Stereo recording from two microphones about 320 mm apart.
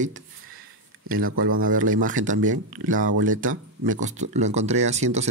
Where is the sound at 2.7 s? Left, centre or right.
Right.